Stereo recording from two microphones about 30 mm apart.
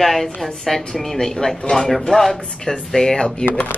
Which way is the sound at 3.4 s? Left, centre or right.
Left.